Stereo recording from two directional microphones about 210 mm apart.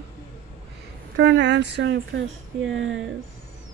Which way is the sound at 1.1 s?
55° right (ahead or behind).